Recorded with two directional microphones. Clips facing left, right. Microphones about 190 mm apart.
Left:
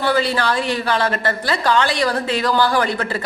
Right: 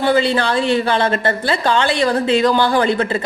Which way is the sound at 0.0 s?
25° right (ahead or behind).